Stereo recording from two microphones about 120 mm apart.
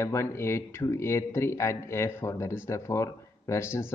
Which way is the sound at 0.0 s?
25° left (ahead or behind).